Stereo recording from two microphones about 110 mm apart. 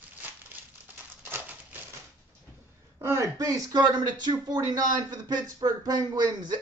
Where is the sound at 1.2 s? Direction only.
15° right (ahead or behind).